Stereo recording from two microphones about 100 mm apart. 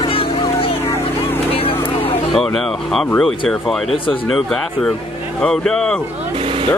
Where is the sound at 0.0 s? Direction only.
65° left (ahead or behind).